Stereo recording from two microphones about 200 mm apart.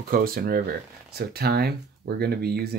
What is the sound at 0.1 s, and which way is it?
Speech, 45° right (ahead or behind).